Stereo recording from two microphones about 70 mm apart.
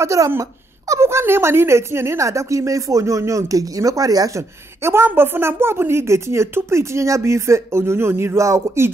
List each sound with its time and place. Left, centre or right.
0.0 s a woman's voice: right
4.4 s speech: right